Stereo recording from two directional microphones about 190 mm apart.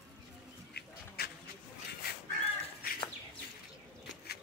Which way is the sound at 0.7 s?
55° left (ahead or behind).